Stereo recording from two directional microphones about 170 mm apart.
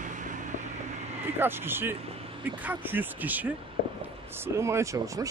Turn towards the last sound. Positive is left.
turn(degrees=-15)  # may be behind; listen again after turning